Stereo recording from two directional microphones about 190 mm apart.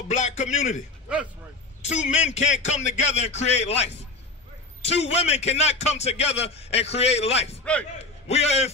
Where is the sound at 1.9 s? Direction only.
35° left (ahead or behind).